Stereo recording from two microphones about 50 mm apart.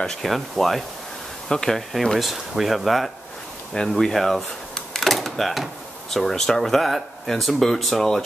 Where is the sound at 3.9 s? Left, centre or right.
Centre.